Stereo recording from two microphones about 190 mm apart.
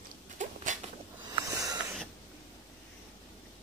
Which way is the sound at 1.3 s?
20° right (ahead or behind).